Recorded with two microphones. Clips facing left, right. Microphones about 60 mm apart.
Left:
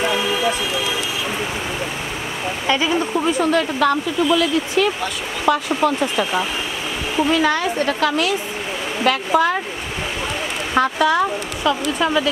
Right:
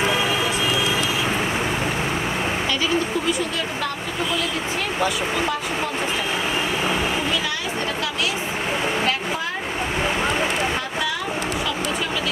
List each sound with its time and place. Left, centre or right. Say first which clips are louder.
2.7 s speech: left 7 dB; left